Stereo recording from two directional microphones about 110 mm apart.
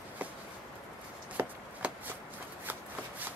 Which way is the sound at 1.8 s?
10° right (ahead or behind).